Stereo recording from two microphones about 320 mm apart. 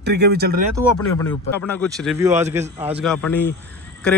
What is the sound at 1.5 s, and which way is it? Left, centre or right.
Speech, centre.